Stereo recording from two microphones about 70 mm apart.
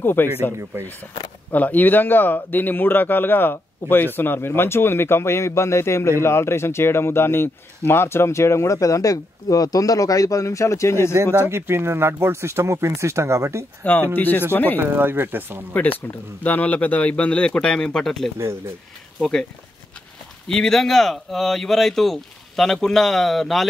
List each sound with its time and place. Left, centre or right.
0.0 s speech: left
1.5 s speech: left
11.5 s speech: right
14.1 s speech: left
14.8 s speech: right
16.4 s speech: left; by 19.4 s centre
20.4 s speech: centre